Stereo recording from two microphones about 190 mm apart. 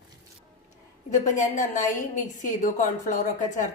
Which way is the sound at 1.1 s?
40° left (ahead or behind).